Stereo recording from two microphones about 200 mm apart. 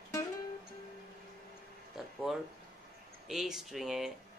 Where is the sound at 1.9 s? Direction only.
Centre (ahead or behind).